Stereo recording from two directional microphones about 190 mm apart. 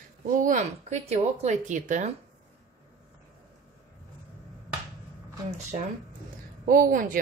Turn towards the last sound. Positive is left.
turn(degrees=-45)  # may be behind; listen again after turning